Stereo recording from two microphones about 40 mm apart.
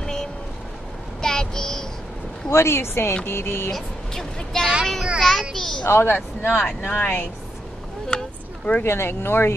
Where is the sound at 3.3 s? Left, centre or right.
Left.